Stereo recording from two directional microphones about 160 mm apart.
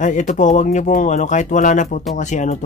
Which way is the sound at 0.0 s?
50° left (ahead or behind).